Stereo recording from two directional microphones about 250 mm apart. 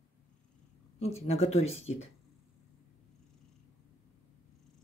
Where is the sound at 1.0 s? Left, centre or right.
Left.